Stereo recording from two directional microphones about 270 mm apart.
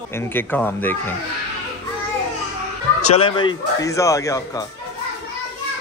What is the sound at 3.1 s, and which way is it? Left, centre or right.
A man's voice, centre.